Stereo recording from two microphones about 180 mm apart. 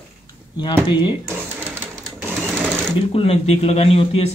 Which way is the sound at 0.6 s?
25° left (ahead or behind).